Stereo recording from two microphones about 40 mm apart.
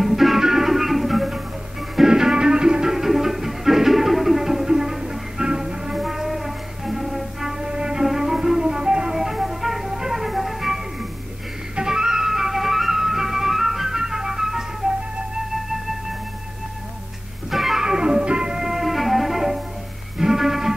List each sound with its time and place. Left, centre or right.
0.0 s music: centre
2.0 s music: centre
5.9 s music: centre
7.6 s music: centre
9.2 s music: centre
17.5 s music: centre